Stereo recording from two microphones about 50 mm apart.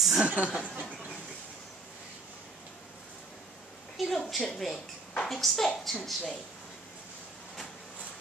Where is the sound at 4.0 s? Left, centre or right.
Centre.